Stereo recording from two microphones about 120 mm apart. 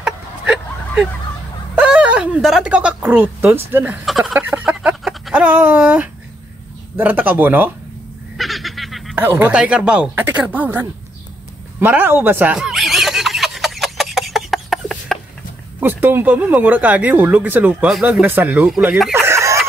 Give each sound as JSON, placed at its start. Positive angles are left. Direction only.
{"t": 0.0, "sound": "vehicle", "side_deg": -5}
{"t": 1.8, "sound": "speech", "side_deg": -10}
{"t": 4.0, "sound": "speech", "side_deg": 0}
{"t": 4.3, "sound": "a sound", "side_deg": -10}
{"t": 7.0, "sound": "speech", "side_deg": -15}
{"t": 8.4, "sound": "goose", "side_deg": 0}
{"t": 9.1, "sound": "speech", "side_deg": -15}
{"t": 12.5, "sound": "a sound", "side_deg": 0}
{"t": 15.8, "sound": "speech", "side_deg": -15}
{"t": 18.2, "sound": "speech", "side_deg": -15}
{"t": 19.1, "sound": "a sound", "side_deg": -20}